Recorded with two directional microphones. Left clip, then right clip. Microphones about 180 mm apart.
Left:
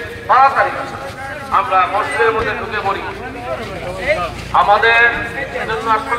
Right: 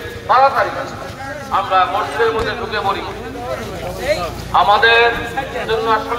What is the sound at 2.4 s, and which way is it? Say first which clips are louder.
Speech: even; 60° right (ahead or behind).